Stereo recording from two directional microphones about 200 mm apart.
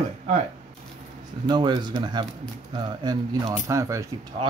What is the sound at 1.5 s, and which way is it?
Speech, 20° right (ahead or behind).